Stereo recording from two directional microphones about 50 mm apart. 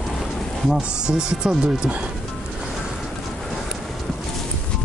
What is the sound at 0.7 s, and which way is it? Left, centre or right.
Speech, centre.